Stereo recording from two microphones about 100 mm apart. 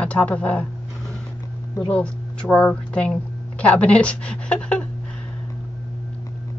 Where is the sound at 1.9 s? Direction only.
10° left (ahead or behind).